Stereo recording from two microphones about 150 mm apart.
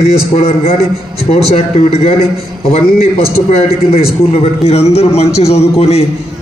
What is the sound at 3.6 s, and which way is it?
A man's voice, 40° left (ahead or behind).